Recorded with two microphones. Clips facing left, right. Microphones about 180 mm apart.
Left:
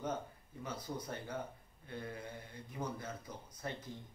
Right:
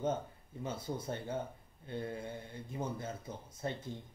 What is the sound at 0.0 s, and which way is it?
A man's voice, 25° right (ahead or behind).